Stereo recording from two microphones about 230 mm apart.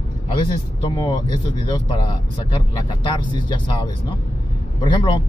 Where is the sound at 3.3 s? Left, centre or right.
Centre.